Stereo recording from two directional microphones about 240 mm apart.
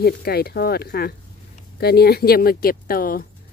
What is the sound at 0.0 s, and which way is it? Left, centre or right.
Speech, left.